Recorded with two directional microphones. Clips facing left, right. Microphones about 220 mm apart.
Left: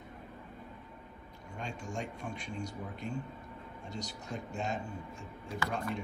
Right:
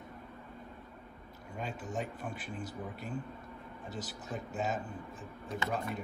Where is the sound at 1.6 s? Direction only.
5° right (ahead or behind).